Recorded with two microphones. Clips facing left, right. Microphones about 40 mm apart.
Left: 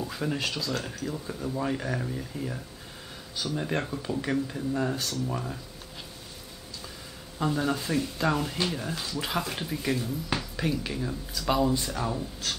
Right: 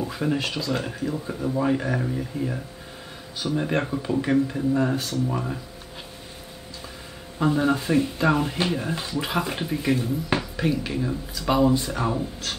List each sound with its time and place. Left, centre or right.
0.0 s speech: centre
7.3 s speech: centre